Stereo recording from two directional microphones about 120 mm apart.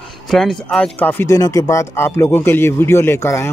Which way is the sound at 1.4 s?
30° left (ahead or behind).